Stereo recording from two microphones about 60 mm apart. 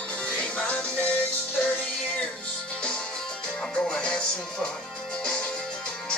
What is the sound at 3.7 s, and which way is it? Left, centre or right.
Music, centre.